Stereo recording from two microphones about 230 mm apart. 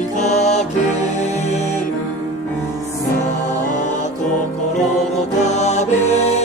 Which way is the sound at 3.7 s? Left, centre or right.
Left.